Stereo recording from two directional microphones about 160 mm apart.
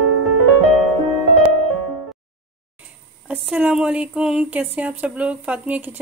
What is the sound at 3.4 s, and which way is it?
Speech, 5° right (ahead or behind).